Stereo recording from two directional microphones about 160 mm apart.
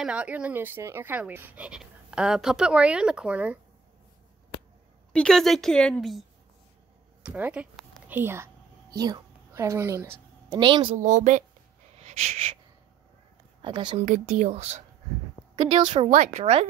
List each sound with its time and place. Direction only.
0.0 s speech: 10° right (ahead or behind)
5.1 s a woman's voice: 5° left (ahead or behind)
7.2 s a woman's voice: 10° right (ahead or behind)
10.5 s a woman's voice: 30° right (ahead or behind)
11.0 s speech: 50° right (ahead or behind)
12.0 s wheeze: 45° right (ahead or behind)
13.6 s speech: 30° right (ahead or behind)
14.0 s a woman's voice: 50° right (ahead or behind)